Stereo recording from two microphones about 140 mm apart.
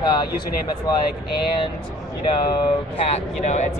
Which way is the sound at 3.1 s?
55° left (ahead or behind).